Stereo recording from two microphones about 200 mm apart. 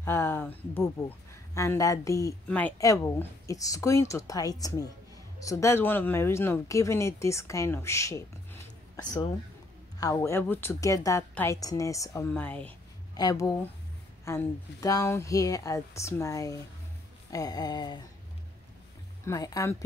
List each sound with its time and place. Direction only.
0.0 s speech: 10° left (ahead or behind)
13.1 s speech: 20° left (ahead or behind)
17.3 s a sound: 20° left (ahead or behind)
19.2 s speech: 15° left (ahead or behind)